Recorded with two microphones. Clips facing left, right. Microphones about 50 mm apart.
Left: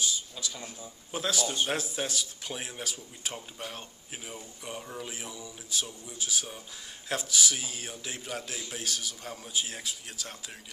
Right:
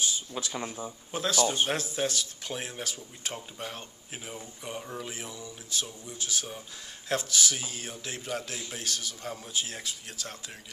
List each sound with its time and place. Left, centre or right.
0.0 s speech: right
1.1 s a man's voice: centre